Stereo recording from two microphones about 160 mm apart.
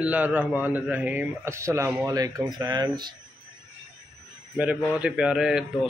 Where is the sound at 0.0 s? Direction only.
10° right (ahead or behind); by 2.9 s 25° right (ahead or behind).